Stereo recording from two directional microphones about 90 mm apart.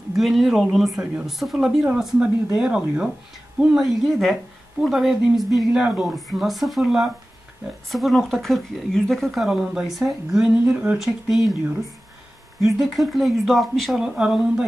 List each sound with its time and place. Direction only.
0.2 s speech: centre (ahead or behind)
10.6 s speech: 20° right (ahead or behind)
11.0 s speech: centre (ahead or behind)
12.8 s speech: centre (ahead or behind)